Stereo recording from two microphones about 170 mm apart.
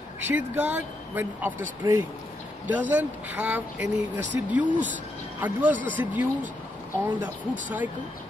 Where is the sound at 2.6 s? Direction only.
10° right (ahead or behind).